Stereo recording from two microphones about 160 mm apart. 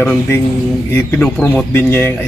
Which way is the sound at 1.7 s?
15° left (ahead or behind).